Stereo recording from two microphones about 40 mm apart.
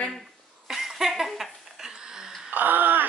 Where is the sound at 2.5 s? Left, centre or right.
Right.